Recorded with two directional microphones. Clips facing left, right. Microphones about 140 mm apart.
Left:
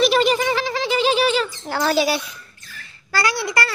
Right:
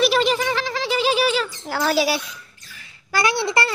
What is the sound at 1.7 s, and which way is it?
A child's voice, 5° right (ahead or behind).